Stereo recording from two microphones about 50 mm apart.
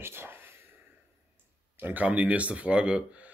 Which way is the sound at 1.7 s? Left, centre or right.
Right.